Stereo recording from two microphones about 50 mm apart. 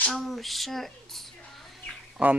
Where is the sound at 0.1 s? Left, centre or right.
Centre.